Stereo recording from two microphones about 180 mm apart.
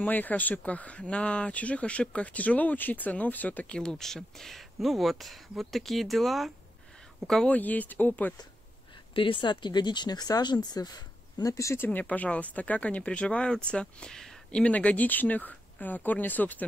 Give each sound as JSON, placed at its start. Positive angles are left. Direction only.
{"t": 0.0, "sound": "speech", "side_deg": 10}
{"t": 9.1, "sound": "speech", "side_deg": 30}